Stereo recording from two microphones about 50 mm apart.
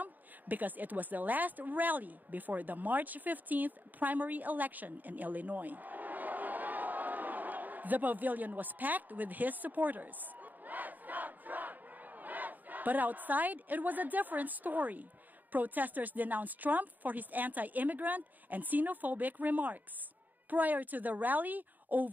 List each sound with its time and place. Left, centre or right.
0.0 s a woman's voice: right